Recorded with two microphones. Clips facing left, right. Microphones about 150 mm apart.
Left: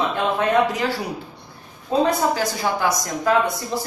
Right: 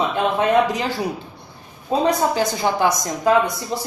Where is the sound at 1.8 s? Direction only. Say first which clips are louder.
Right 1 dB; 20° right (ahead or behind).